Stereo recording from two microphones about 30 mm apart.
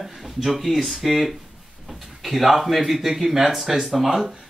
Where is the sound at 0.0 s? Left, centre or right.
Centre.